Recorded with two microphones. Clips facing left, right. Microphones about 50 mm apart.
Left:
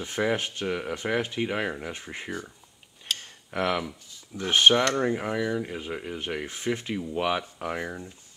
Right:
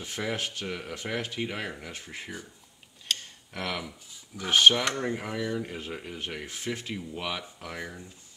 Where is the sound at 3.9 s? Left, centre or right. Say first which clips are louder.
Left 4 dB; centre.